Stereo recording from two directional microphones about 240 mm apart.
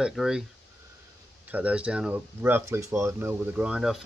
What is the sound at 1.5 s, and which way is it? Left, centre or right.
Speech, centre.